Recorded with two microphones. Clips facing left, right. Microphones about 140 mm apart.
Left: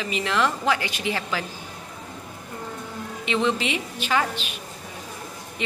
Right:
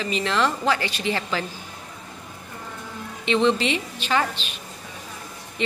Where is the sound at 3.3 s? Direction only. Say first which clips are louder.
Right 4 dB; 10° left (ahead or behind).